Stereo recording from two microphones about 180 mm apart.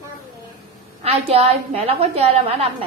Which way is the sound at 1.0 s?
35° right (ahead or behind).